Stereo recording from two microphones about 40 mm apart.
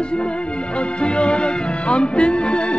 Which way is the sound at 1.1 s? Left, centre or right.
Left.